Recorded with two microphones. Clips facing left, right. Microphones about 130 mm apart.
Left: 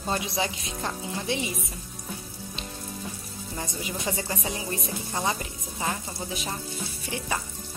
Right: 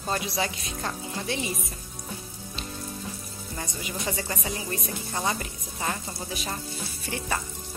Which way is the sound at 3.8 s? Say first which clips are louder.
Even; 25° left (ahead or behind).